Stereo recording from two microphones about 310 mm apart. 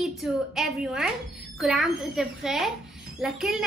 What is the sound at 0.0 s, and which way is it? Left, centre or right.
A woman's voice, centre.